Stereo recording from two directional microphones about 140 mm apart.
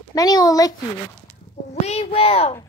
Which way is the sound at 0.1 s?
25° left (ahead or behind).